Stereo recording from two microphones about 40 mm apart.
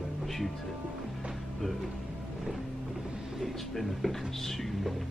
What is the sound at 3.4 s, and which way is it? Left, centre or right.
Speech, centre.